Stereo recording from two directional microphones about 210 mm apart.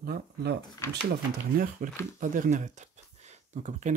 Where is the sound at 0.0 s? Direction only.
50° right (ahead or behind).